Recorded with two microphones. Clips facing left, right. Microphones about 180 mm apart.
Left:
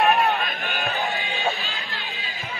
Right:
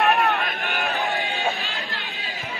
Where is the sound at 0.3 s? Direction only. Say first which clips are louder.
Even; 65° right (ahead or behind).